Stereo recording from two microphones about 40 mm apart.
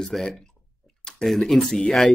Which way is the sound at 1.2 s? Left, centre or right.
Centre.